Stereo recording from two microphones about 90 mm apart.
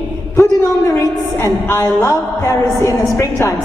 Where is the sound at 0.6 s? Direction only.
30° left (ahead or behind).